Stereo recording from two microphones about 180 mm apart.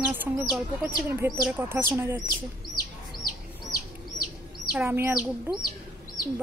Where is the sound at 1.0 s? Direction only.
15° right (ahead or behind).